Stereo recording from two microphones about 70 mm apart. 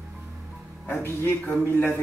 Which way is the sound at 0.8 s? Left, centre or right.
Left.